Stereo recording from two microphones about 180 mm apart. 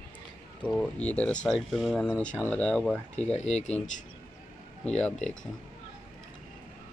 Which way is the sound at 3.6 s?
5° left (ahead or behind).